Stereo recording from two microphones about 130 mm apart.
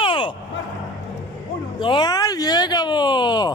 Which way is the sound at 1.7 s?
40° left (ahead or behind).